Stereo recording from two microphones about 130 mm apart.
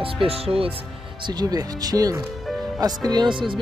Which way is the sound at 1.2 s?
30° right (ahead or behind).